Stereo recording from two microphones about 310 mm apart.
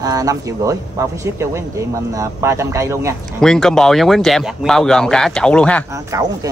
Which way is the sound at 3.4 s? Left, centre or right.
Centre.